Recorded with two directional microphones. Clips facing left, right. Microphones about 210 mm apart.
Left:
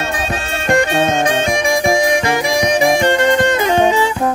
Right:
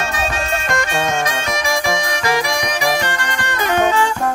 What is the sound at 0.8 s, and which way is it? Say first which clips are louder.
Music: left 5 dB; 25° left (ahead or behind).